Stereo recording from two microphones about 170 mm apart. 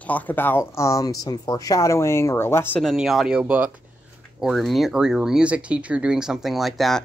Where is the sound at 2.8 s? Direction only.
Centre (ahead or behind).